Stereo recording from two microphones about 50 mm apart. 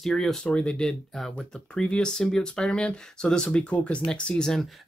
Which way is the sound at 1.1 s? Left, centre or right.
Centre.